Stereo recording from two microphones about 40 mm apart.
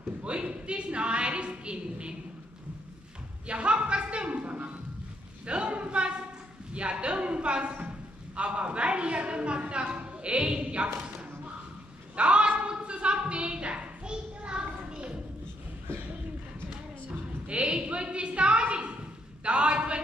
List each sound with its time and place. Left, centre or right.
0.2 s a woman's voice: right
3.4 s a woman's voice: right
12.2 s a woman's voice: right
12.8 s a sound: right
17.5 s a sound: right
19.4 s a man's voice: right